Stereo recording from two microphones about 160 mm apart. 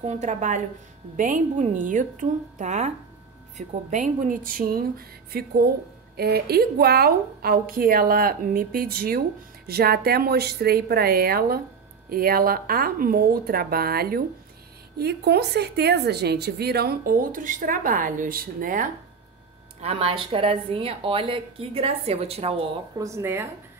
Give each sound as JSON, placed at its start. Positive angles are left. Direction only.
{"t": 0.0, "sound": "a woman's voice", "side_deg": -50}
{"t": 6.1, "sound": "a woman's voice", "side_deg": -80}
{"t": 15.0, "sound": "a woman's voice", "side_deg": -90}
{"t": 19.8, "sound": "speech", "side_deg": -40}
{"t": 22.9, "sound": "speech", "side_deg": -20}